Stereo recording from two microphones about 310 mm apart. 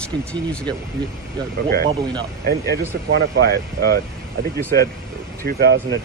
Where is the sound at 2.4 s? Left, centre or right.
Right.